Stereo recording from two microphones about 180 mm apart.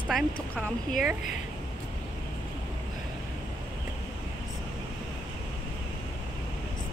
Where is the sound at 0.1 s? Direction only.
Centre (ahead or behind).